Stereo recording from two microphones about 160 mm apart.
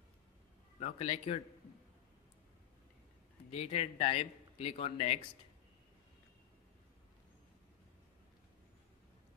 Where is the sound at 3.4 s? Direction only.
40° left (ahead or behind).